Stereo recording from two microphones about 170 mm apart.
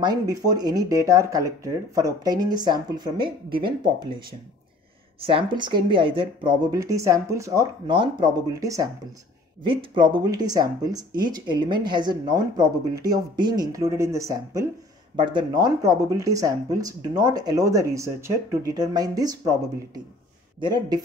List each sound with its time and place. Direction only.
0.0 s speech: 20° right (ahead or behind)
5.2 s speech: 30° right (ahead or behind)
9.7 s speech: 30° right (ahead or behind)